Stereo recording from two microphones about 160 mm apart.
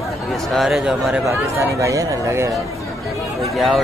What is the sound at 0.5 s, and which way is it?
Speech, centre (ahead or behind).